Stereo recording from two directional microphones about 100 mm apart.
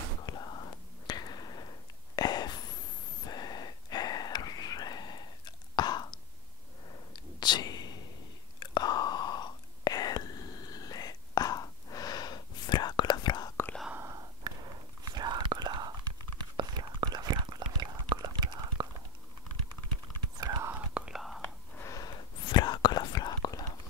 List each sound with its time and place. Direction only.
0.3 s whispering: 45° left (ahead or behind)
3.3 s a sound: 45° left (ahead or behind)
7.3 s whispering: 45° left (ahead or behind)
13.9 s whispering: 30° right (ahead or behind)
14.5 s a sound: 45° right (ahead or behind)
15.1 s whispering: 50° right (ahead or behind)
20.3 s whispering: 45° right (ahead or behind)
20.6 s whispering: 15° right (ahead or behind)
21.8 s gasp: 35° left (ahead or behind)
22.4 s whispering: 50° left (ahead or behind)